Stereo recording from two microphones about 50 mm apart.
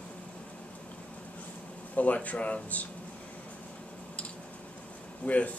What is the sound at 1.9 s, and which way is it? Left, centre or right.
Speech, left.